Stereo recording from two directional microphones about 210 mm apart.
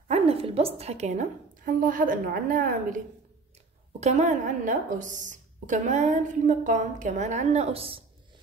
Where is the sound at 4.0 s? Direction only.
35° right (ahead or behind).